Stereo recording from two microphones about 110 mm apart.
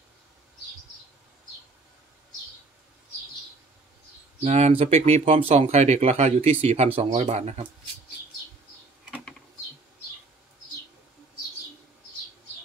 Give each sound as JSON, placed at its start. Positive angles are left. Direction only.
{"t": 4.4, "sound": "speech", "side_deg": -85}